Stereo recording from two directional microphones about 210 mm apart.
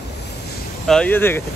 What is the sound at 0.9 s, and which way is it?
Speech, 5° left (ahead or behind).